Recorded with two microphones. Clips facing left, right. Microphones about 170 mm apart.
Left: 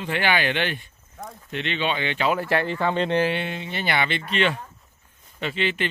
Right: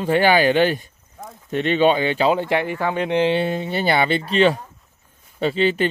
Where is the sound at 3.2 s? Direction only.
25° right (ahead or behind).